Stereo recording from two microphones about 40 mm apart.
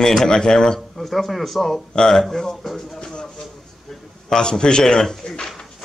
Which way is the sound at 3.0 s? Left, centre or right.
Centre.